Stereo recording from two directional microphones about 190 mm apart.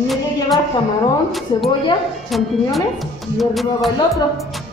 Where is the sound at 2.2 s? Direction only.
Centre (ahead or behind).